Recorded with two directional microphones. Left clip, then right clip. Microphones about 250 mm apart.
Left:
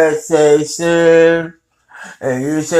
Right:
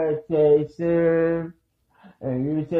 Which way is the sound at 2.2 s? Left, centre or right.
Left.